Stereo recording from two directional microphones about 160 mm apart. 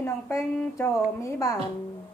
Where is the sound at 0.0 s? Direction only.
20° left (ahead or behind).